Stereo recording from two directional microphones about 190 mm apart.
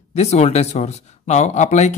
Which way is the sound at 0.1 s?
35° left (ahead or behind).